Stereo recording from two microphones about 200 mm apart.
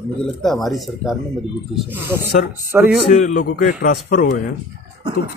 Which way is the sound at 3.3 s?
50° left (ahead or behind).